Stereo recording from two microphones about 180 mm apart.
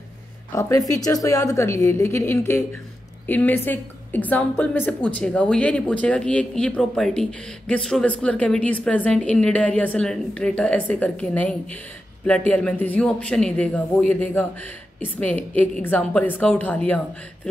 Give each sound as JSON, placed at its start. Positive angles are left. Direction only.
{"t": 0.6, "sound": "a woman's voice", "side_deg": 20}